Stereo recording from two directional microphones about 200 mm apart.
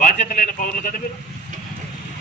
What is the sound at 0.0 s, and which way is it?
A man's voice, 45° left (ahead or behind).